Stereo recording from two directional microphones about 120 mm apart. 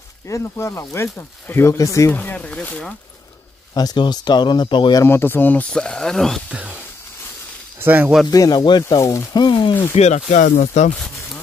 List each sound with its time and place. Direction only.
0.3 s speech: 25° left (ahead or behind)
2.1 s speech: 10° left (ahead or behind)
3.7 s speech: 35° left (ahead or behind)
5.0 s speech: 20° left (ahead or behind); by 6.4 s 5° left (ahead or behind)
6.5 s speech: 10° right (ahead or behind)
7.8 s speech: 15° right (ahead or behind)
8.3 s speech: 30° left (ahead or behind)
8.8 s speech: 25° left (ahead or behind); by 9.8 s 40° left (ahead or behind)
9.9 s speech: 70° left (ahead or behind)